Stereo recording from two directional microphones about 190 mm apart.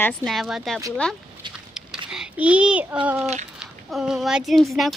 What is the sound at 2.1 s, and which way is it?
Speech, 5° right (ahead or behind).